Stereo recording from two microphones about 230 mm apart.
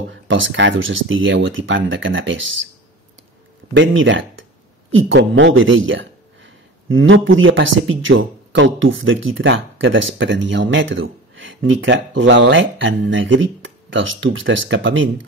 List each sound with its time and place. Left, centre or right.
0.1 s speech: right
3.7 s speech: right